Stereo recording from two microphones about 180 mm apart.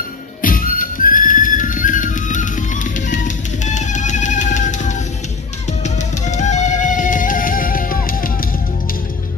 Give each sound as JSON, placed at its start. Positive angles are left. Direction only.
{"t": 0.4, "sound": "music", "side_deg": 50}